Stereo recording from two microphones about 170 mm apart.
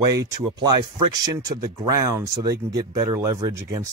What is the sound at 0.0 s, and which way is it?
Speech, 20° right (ahead or behind).